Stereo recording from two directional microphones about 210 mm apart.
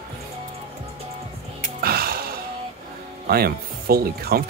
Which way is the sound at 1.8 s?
45° right (ahead or behind).